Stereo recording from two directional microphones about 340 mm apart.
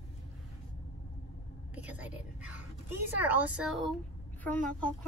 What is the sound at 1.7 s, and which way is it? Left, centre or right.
A woman's voice, centre.